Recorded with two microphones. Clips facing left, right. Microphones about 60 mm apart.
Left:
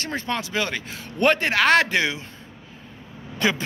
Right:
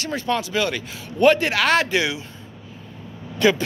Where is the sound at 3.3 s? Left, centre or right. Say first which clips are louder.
Right 5 dB; left.